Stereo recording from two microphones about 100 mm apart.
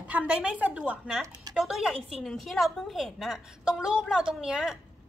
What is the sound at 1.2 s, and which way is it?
Speech, 35° right (ahead or behind).